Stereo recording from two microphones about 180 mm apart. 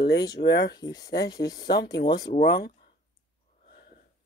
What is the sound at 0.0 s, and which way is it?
Speech, 65° left (ahead or behind).